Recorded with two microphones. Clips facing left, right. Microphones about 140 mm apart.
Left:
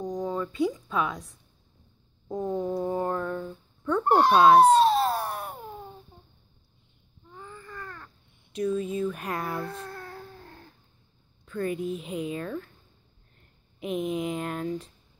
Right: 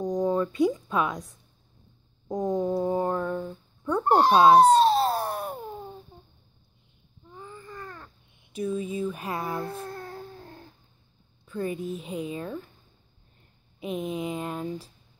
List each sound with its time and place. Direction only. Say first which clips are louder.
0.0 s a sound: right 5 dB; 20° right (ahead or behind)
1.0 s a woman's voice: right 2 dB; 20° right (ahead or behind)
4.1 s a sound: right 1 dB; 30° right (ahead or behind)
7.3 s babbling: right 1 dB; 20° right (ahead or behind)
8.5 s speech: left 2 dB; 5° right (ahead or behind)
9.5 s a woman's voice: right 1 dB; 25° right (ahead or behind)
9.8 s a sound: right 3 dB; 25° right (ahead or behind)
11.6 s a woman's voice: left 1 dB; 35° right (ahead or behind)
12.4 s speech: left 1 dB; 15° right (ahead or behind)
13.7 s a woman's voice: left 2 dB; 35° right (ahead or behind)
14.4 s speech: left 1 dB; 10° right (ahead or behind)